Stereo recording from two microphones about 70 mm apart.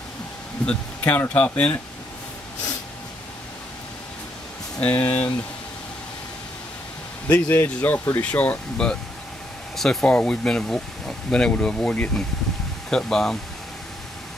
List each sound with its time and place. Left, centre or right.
0.7 s speech: left
4.7 s speech: centre
5.0 s speech: left
7.2 s speech: left
9.8 s speech: centre
12.9 s speech: centre